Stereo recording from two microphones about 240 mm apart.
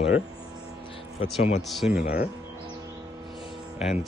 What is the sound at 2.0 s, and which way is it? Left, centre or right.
Speech, left.